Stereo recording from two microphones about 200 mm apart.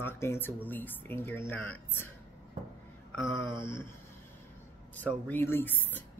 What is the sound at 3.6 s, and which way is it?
Speech, 10° left (ahead or behind).